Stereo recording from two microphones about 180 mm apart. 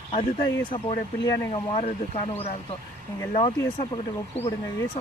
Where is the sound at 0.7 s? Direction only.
25° left (ahead or behind).